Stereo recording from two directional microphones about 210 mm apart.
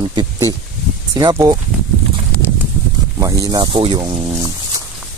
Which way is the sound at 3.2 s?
15° right (ahead or behind).